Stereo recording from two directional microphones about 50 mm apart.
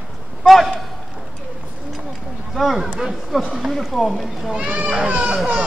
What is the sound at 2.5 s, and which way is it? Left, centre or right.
Speech, centre.